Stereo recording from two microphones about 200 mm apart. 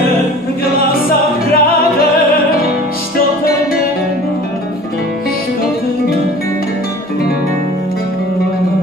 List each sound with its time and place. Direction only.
1.5 s music: 50° left (ahead or behind)